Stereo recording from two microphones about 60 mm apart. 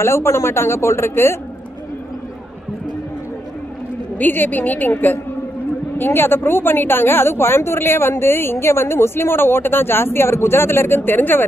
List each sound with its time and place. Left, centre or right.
0.0 s a woman's voice: left
4.2 s a woman's voice: left